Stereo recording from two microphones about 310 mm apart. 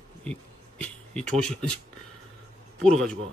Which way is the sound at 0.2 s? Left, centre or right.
Centre.